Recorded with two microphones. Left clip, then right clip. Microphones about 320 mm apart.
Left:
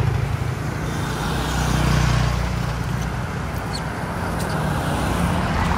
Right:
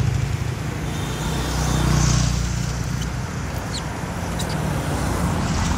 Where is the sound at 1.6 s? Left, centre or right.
Left.